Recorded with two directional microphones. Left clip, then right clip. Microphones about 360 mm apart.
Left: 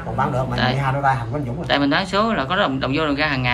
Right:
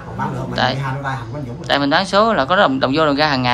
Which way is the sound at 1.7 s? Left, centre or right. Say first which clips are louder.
Right 4 dB; centre.